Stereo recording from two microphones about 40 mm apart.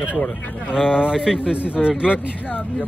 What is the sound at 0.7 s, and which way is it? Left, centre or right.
Speech, centre.